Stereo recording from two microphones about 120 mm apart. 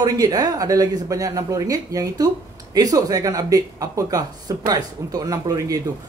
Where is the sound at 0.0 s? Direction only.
35° right (ahead or behind).